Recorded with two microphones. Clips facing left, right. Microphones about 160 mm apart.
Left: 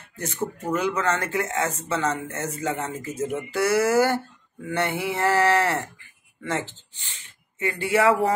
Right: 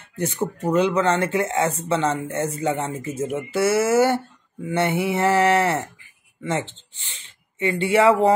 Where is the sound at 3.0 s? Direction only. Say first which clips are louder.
Right 2 dB; 25° right (ahead or behind).